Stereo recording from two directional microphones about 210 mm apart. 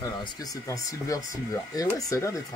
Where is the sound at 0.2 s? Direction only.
15° left (ahead or behind).